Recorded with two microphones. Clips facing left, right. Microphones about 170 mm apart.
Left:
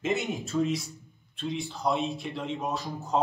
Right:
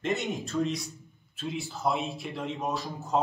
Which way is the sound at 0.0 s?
Centre (ahead or behind).